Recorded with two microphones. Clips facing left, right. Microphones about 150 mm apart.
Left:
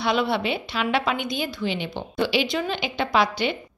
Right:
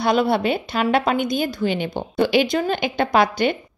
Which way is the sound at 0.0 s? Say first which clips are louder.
Right 5 dB; 45° right (ahead or behind).